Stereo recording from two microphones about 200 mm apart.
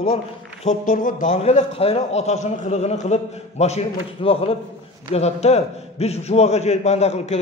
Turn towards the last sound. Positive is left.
turn(degrees=35)  # may be behind; listen again after turning